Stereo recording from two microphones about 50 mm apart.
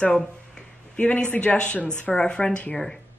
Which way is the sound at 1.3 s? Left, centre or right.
Left.